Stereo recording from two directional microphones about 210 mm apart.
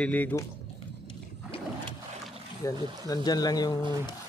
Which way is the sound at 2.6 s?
15° left (ahead or behind).